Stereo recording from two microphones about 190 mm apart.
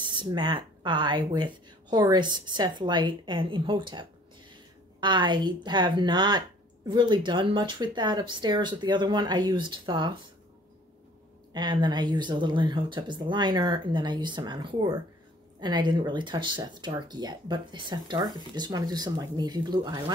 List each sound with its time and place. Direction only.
0.0 s speech: 25° right (ahead or behind)
11.5 s speech: 25° right (ahead or behind)